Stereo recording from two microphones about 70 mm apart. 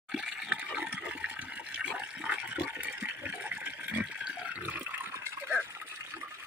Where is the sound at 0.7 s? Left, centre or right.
Centre.